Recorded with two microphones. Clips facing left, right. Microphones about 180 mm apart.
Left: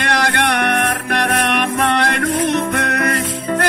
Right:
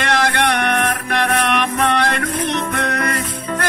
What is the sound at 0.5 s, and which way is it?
Music, 50° left (ahead or behind).